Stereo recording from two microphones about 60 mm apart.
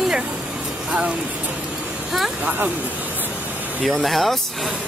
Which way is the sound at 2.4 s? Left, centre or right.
Right.